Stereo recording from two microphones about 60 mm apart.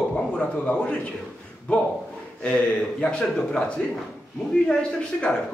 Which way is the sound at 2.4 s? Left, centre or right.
Left.